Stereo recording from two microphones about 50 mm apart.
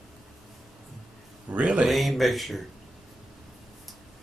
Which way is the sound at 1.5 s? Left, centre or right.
Right.